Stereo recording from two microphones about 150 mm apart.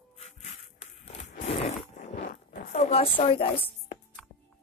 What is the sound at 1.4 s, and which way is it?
Zipper, 45° left (ahead or behind).